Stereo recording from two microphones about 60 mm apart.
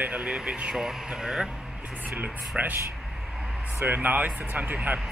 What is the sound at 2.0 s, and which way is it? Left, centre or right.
Speech, right.